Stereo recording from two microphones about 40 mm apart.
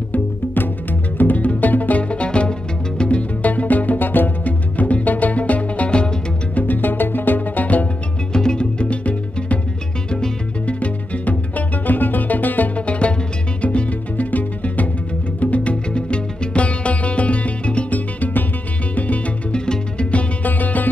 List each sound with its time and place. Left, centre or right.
1.1 s music: left
3.4 s music: left
4.5 s music: left
6.5 s music: left
8.3 s music: centre
10.7 s music: left
12.7 s music: left
17.9 s music: left
19.5 s music: left
20.4 s music: left